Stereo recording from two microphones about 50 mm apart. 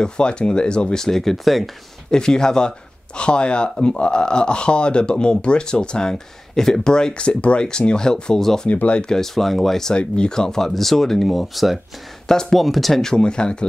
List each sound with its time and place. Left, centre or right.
0.0 s speech: centre
2.0 s speech: centre
8.6 s speech: left
9.0 s speech: centre
9.9 s speech: centre
12.3 s speech: centre